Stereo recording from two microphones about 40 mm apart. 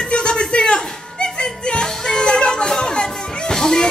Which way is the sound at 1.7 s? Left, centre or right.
Centre.